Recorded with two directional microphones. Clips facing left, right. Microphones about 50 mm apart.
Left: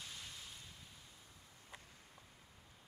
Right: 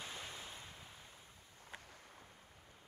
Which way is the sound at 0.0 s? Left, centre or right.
Right.